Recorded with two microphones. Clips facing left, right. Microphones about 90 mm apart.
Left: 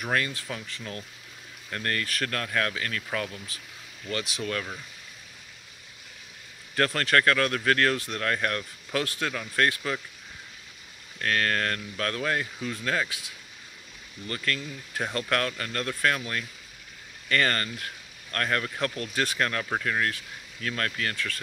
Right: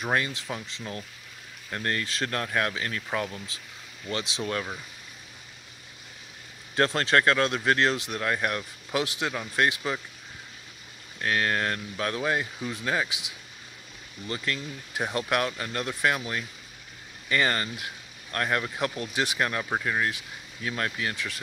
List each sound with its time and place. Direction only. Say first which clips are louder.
0.0 s speech: right 1 dB; 20° right (ahead or behind)
6.7 s speech: right 1 dB; 25° right (ahead or behind)
11.1 s speech: even; 15° right (ahead or behind)